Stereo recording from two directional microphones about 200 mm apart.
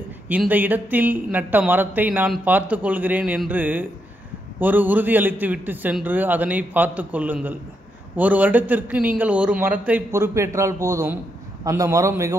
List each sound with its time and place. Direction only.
0.3 s speech: 10° right (ahead or behind)